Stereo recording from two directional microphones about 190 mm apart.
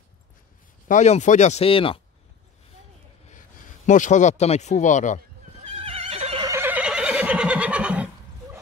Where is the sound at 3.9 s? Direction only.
40° left (ahead or behind).